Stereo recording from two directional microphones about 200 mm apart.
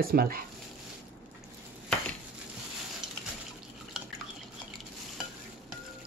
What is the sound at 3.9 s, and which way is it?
Drip, centre (ahead or behind).